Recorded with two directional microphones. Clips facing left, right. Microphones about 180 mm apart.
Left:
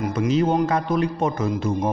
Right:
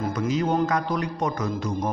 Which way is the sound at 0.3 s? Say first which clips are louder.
Left 3 dB; 30° left (ahead or behind).